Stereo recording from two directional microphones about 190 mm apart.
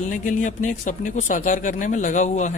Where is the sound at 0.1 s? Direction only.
40° left (ahead or behind).